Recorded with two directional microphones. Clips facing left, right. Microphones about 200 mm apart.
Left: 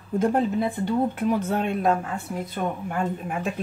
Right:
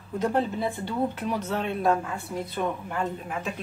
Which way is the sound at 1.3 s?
50° left (ahead or behind).